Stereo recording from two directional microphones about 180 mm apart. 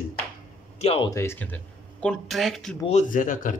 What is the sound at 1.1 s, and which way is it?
Speech, 15° left (ahead or behind).